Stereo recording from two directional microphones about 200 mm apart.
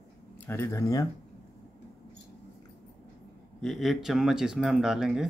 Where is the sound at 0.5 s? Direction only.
15° left (ahead or behind).